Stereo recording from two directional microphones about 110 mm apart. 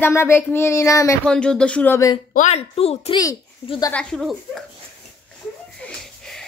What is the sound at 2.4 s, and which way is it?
Speech, 70° left (ahead or behind).